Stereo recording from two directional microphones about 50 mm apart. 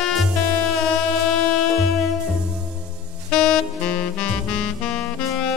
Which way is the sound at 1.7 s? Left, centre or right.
Centre.